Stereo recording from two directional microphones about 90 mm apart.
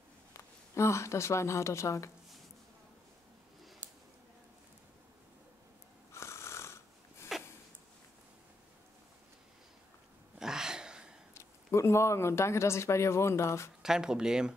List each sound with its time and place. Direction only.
0.3 s speech: 30° left (ahead or behind)
3.8 s a sound: 15° right (ahead or behind)
6.1 s snoring: 30° left (ahead or behind)
10.4 s a sound: 5° right (ahead or behind)
11.3 s speech: 30° left (ahead or behind)
13.8 s speech: 5° right (ahead or behind)